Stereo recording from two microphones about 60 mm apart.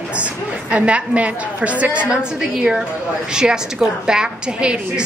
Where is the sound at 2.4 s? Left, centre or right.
Centre.